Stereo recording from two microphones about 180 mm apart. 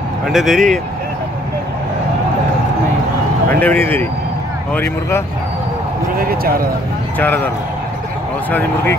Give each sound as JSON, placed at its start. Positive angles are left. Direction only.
{"t": 0.3, "sound": "speech", "side_deg": 0}
{"t": 3.4, "sound": "speech", "side_deg": 10}
{"t": 6.1, "sound": "speech", "side_deg": -55}
{"t": 7.2, "sound": "speech", "side_deg": 10}